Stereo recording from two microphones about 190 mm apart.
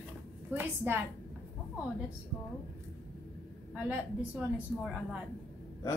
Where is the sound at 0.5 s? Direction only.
10° right (ahead or behind).